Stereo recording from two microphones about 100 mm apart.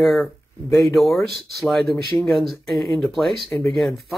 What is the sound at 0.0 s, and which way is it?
Speech, centre (ahead or behind).